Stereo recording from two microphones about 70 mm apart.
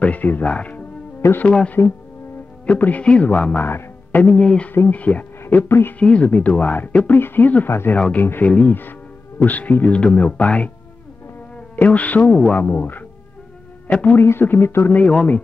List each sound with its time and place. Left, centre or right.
0.0 s speech: left
4.4 s speech: centre
5.4 s speech: left
5.9 s speech: centre
11.7 s speech: left
13.8 s speech: centre
14.1 s speech: left
15.0 s speech: centre